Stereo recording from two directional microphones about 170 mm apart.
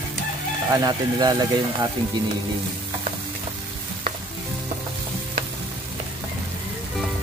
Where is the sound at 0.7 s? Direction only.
20° right (ahead or behind).